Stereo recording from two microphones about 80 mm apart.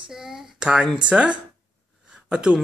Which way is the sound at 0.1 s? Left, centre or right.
Centre.